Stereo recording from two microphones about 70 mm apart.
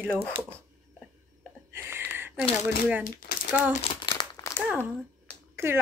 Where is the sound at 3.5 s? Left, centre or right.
Right.